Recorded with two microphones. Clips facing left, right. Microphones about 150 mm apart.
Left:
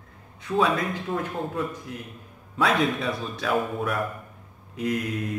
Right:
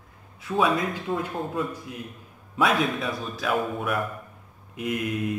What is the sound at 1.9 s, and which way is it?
Speech, 15° right (ahead or behind).